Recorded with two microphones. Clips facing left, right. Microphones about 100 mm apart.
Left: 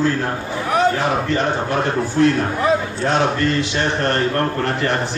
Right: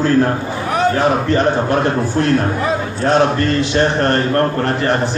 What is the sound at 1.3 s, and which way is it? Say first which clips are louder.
A man's voice: right 5 dB; 45° right (ahead or behind).